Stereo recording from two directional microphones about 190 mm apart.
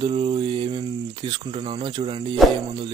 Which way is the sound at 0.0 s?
30° right (ahead or behind).